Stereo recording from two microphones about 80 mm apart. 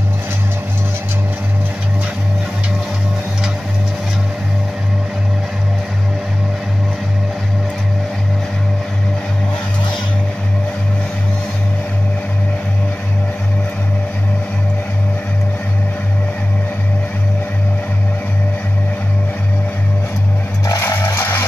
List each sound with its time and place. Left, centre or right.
20.8 s music: left